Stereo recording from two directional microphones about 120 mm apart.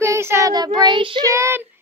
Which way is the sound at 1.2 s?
25° right (ahead or behind).